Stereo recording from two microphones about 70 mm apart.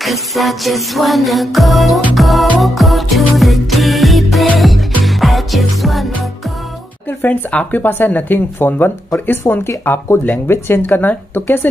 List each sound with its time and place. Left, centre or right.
0.0 s music: centre
7.1 s speech: left